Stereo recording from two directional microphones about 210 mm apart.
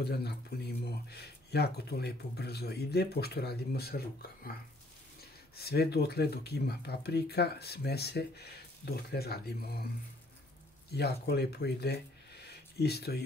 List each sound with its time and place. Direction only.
0.0 s speech: 50° left (ahead or behind)
5.6 s speech: 50° left (ahead or behind)
10.9 s speech: 50° left (ahead or behind)